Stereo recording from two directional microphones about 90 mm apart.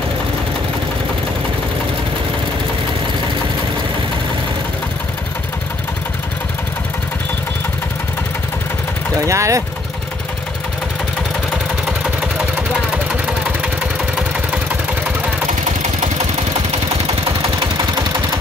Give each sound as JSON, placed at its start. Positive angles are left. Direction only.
{"t": 9.2, "sound": "vehicle", "side_deg": -35}